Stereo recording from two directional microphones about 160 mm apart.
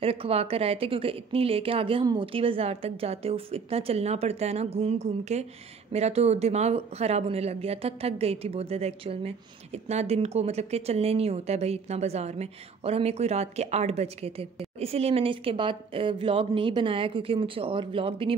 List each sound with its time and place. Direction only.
0.0 s a woman's voice: 35° right (ahead or behind)